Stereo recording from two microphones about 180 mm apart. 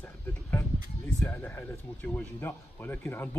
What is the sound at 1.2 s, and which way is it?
Speech, 10° left (ahead or behind).